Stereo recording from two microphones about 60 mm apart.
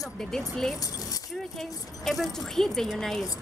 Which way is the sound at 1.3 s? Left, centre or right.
Centre.